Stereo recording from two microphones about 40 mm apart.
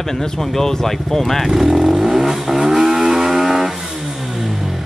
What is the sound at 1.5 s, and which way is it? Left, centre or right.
Vehicle, centre.